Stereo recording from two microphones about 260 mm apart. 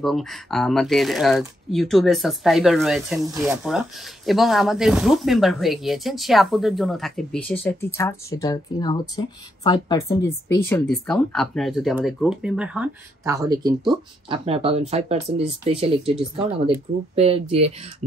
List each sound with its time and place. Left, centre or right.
0.0 s speech: centre; by 17.7 s right